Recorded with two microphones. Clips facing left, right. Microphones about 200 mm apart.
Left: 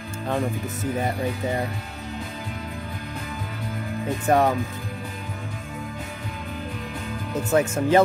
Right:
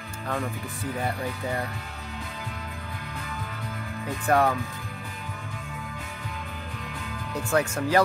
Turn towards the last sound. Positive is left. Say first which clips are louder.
# left 4 dB
turn(degrees=20)  # may be behind; listen again after turning